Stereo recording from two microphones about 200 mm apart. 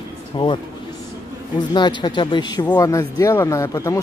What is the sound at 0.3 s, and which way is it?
Speech, 25° left (ahead or behind).